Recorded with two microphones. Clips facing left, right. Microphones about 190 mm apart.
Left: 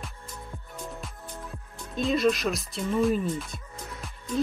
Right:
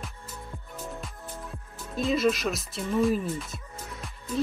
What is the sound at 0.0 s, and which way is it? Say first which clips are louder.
Music: even; centre (ahead or behind).